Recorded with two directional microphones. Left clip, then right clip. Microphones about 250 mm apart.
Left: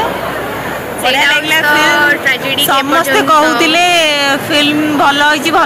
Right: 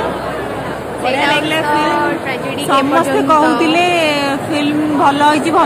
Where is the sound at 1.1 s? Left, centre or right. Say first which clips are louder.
Left 4 dB; centre.